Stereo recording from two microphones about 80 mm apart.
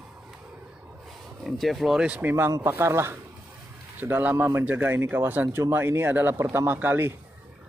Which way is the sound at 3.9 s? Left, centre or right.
Right.